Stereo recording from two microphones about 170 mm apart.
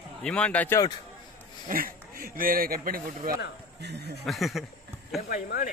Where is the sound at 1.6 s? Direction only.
55° right (ahead or behind).